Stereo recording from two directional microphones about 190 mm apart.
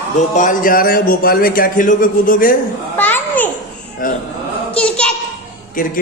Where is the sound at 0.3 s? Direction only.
45° left (ahead or behind).